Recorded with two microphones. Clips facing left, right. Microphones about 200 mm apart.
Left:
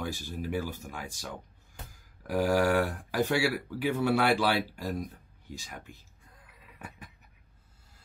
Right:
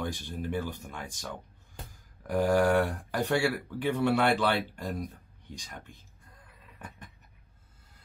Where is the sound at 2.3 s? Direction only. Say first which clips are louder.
Right 1 dB; 10° left (ahead or behind).